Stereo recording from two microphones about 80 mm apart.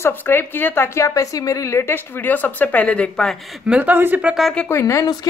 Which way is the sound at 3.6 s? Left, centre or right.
Centre.